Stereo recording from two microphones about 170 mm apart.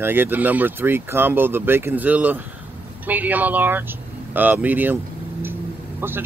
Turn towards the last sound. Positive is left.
turn(degrees=-15)  # may be behind; listen again after turning